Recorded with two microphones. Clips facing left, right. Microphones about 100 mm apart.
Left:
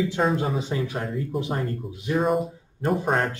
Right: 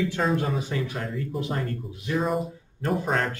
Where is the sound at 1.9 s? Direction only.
20° left (ahead or behind).